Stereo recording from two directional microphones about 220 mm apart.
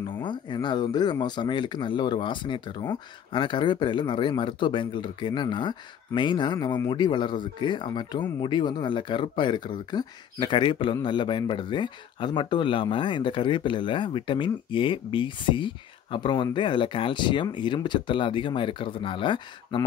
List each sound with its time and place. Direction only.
0.2 s speech: 20° left (ahead or behind)